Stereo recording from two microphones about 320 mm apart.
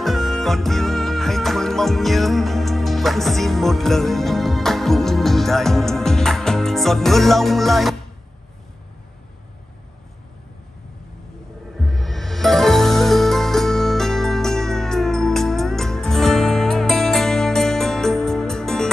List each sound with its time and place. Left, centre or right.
0.0 s music: centre
11.7 s music: centre